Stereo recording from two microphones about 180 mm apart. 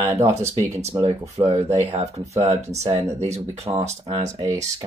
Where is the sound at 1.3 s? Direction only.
35° right (ahead or behind).